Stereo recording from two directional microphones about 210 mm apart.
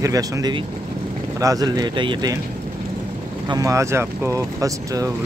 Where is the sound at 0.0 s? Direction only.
15° right (ahead or behind).